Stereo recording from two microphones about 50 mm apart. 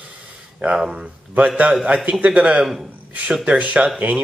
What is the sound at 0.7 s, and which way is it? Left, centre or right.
Speech, centre.